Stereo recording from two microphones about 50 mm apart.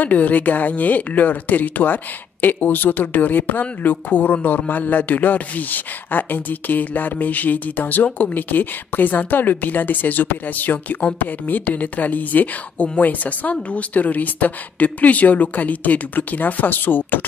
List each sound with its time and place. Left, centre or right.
0.0 s a woman's voice: left